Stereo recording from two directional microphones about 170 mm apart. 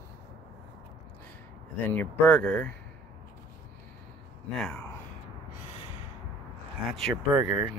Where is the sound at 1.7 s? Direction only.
10° left (ahead or behind).